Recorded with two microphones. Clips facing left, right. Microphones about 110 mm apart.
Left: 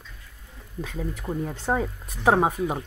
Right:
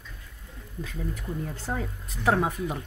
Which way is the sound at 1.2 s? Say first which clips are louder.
Left 7 dB; 45° left (ahead or behind).